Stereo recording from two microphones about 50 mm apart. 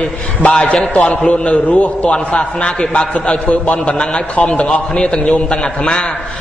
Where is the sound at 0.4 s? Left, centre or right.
Left.